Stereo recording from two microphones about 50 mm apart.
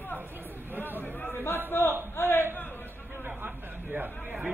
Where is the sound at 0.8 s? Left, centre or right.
Left.